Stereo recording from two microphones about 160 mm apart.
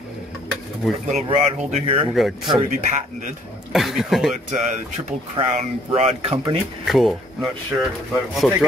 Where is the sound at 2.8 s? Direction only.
50° right (ahead or behind).